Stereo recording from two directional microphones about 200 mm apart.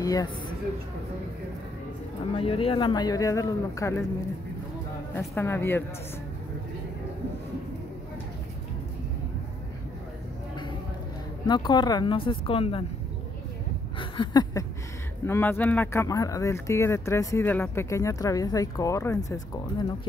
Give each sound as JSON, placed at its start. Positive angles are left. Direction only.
{"t": 0.0, "sound": "speech", "side_deg": 20}
{"t": 2.3, "sound": "speech", "side_deg": 25}
{"t": 5.1, "sound": "speech", "side_deg": 10}
{"t": 11.4, "sound": "speech", "side_deg": 20}
{"t": 13.9, "sound": "a sound", "side_deg": 25}
{"t": 15.2, "sound": "speech", "side_deg": 10}